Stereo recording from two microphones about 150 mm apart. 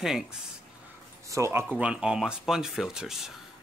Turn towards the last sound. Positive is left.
turn(degrees=-5)  # may be behind; listen again after turning